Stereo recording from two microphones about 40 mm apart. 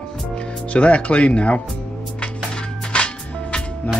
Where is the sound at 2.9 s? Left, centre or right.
Left.